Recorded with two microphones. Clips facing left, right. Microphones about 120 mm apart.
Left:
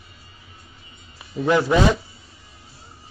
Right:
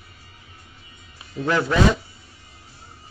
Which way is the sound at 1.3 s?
20° left (ahead or behind).